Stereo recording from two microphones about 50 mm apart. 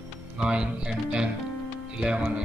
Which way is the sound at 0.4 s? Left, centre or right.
Centre.